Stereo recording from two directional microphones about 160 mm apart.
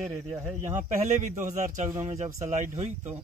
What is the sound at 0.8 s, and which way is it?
A man's voice, 50° right (ahead or behind).